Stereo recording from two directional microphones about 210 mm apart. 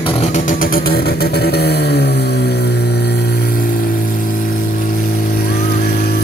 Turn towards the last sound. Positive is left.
turn(degrees=50)  # may be behind; listen again after turning